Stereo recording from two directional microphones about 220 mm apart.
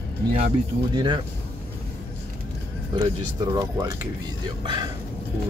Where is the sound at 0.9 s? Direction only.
20° right (ahead or behind).